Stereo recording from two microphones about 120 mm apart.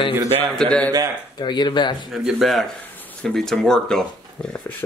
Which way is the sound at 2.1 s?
Centre (ahead or behind).